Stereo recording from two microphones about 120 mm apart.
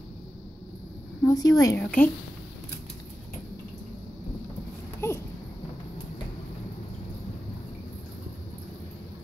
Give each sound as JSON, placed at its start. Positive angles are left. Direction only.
{"t": 1.2, "sound": "a woman's voice", "side_deg": 30}
{"t": 1.8, "sound": "speech", "side_deg": 15}
{"t": 5.0, "sound": "a sound", "side_deg": 20}